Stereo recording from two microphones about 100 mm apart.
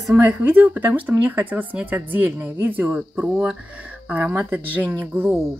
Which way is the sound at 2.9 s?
5° right (ahead or behind).